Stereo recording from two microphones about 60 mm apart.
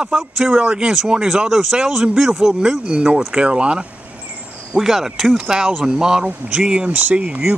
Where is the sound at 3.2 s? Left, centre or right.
Centre.